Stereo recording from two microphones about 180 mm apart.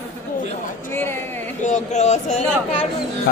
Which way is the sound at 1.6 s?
40° left (ahead or behind).